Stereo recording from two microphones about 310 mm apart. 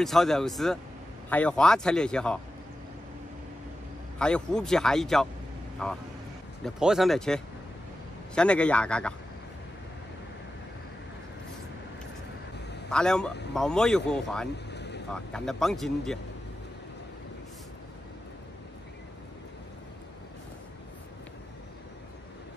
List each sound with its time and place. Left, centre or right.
0.0 s speech: centre
4.2 s speech: centre
12.9 s speech: centre
14.7 s vehicle: left
15.0 s speech: centre